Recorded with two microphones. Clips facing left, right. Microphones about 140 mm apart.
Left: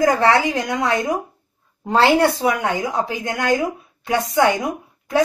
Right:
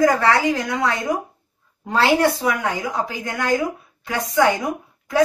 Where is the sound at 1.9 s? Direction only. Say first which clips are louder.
Left 2 dB; 25° left (ahead or behind).